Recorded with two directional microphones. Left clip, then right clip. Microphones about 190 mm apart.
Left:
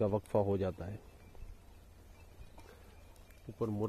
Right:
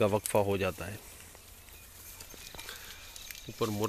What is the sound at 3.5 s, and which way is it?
Speech, 25° right (ahead or behind).